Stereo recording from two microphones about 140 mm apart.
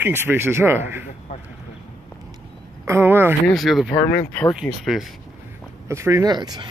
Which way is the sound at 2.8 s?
15° right (ahead or behind).